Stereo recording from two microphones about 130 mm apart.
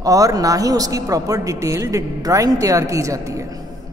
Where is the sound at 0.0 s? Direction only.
25° right (ahead or behind).